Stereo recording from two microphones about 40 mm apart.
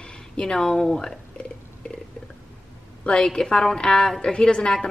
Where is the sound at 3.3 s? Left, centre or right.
Centre.